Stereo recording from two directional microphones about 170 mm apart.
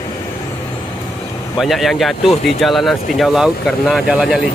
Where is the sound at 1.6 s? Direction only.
Centre (ahead or behind).